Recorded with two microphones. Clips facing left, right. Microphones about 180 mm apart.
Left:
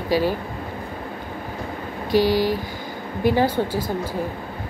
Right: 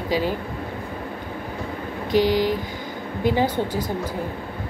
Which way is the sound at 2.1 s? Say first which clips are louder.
Left 1 dB; 20° right (ahead or behind).